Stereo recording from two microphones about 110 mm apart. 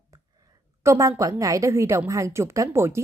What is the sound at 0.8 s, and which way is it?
A woman's voice, 30° right (ahead or behind).